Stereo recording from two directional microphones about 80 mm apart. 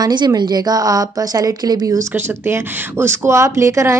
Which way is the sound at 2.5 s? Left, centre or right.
Right.